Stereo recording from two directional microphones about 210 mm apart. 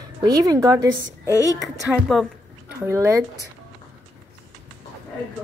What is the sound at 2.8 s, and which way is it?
Speech, 15° right (ahead or behind).